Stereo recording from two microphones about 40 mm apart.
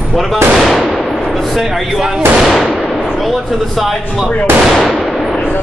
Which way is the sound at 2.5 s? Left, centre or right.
Centre.